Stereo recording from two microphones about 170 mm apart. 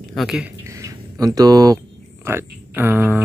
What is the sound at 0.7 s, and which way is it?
Bird, 20° right (ahead or behind).